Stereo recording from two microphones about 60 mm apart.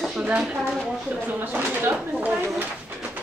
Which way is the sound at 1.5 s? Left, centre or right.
Right.